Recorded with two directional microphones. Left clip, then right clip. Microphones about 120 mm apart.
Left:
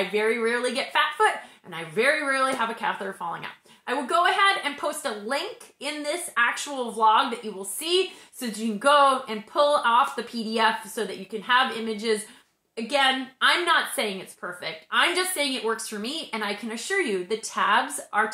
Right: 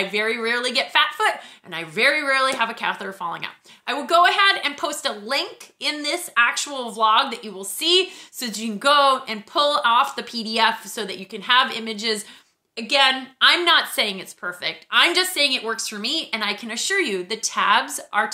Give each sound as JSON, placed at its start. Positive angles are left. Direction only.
{"t": 0.1, "sound": "a woman's voice", "side_deg": -20}